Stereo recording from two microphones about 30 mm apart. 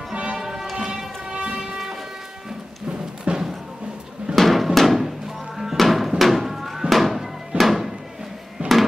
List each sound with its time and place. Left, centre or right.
0.1 s music: right
0.4 s music: centre
1.3 s music: right
3.3 s music: right
4.4 s drum: centre
4.7 s music: centre
8.6 s a sound: right